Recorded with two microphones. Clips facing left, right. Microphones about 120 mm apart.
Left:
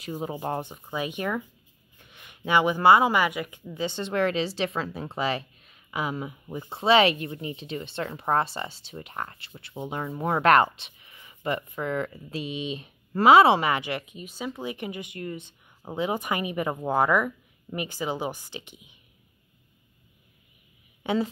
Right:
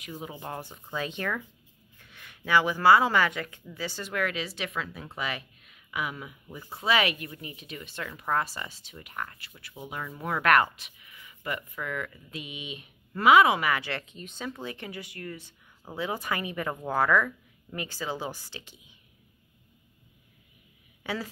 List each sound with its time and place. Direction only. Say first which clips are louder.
0.0 s speech: left 7 dB; 40° left (ahead or behind)
0.6 s speech: left 3 dB; 15° left (ahead or behind)
21.0 s a sound: left 8 dB; 20° left (ahead or behind)